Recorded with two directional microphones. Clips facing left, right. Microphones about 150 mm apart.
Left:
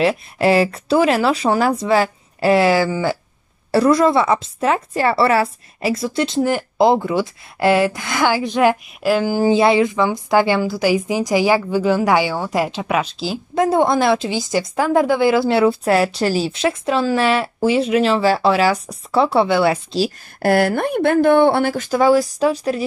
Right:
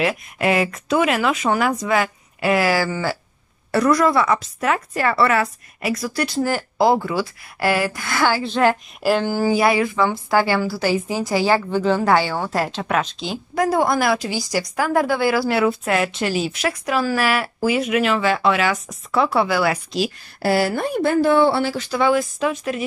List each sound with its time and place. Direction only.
0.0 s a woman's voice: 30° left (ahead or behind); by 8.7 s 15° left (ahead or behind)
9.0 s a sound: centre (ahead or behind)
9.3 s a woman's voice: 20° left (ahead or behind); by 13.4 s 5° left (ahead or behind)
13.6 s a woman's voice: 25° left (ahead or behind)
20.3 s speech: 55° left (ahead or behind); by 22.8 s 35° left (ahead or behind)